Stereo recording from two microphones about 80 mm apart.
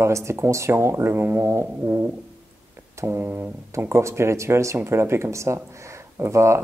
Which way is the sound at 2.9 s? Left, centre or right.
Right.